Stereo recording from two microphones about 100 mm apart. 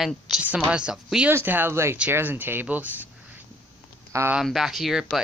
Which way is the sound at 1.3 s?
20° right (ahead or behind).